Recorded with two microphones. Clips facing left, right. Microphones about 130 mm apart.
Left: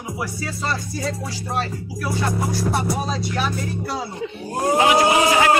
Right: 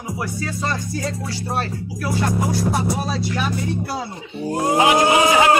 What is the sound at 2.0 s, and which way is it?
Music, centre (ahead or behind).